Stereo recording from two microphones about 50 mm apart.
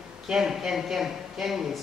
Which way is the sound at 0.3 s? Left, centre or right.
Centre.